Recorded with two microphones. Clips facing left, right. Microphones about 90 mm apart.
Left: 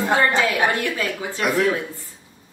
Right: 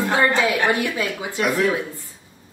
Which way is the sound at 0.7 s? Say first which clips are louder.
Right 1 dB; 15° right (ahead or behind).